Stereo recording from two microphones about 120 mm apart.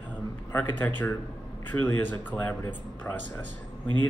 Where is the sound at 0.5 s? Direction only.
15° left (ahead or behind).